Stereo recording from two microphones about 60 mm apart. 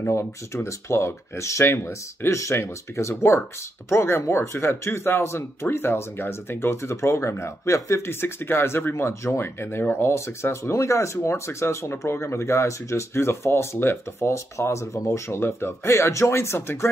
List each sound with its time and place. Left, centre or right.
0.0 s speech: left
14.3 s speech: left